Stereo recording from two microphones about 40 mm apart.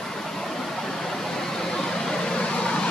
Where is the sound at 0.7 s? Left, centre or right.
Centre.